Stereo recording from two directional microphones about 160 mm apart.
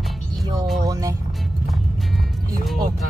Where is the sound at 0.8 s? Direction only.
20° right (ahead or behind).